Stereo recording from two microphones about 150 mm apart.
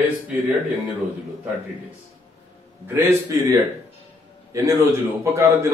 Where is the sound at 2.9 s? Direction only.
15° right (ahead or behind).